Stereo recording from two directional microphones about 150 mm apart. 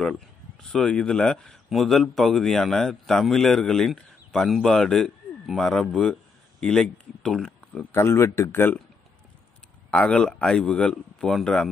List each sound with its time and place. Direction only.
0.6 s speech: 5° left (ahead or behind)
7.9 s speech: 15° left (ahead or behind)
9.8 s speech: 5° left (ahead or behind)